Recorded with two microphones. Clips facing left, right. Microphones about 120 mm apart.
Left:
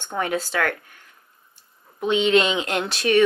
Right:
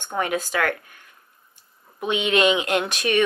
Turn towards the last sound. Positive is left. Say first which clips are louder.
# even
turn(degrees=-15)  # may be behind; listen again after turning